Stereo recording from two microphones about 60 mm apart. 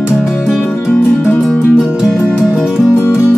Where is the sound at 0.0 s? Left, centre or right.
Left.